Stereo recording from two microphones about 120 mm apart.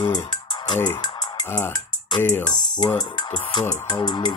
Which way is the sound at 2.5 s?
35° left (ahead or behind).